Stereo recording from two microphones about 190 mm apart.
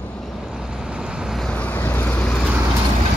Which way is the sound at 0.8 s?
5° right (ahead or behind).